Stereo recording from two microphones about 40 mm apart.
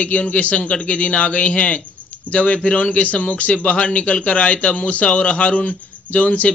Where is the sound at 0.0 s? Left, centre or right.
Left.